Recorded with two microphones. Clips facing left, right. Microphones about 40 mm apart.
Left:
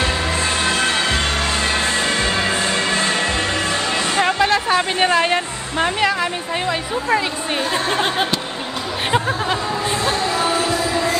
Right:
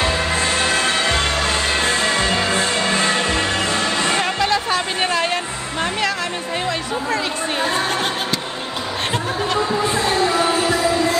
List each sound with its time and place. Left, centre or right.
4.2 s music: centre